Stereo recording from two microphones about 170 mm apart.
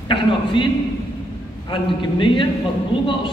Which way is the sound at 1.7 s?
30° left (ahead or behind).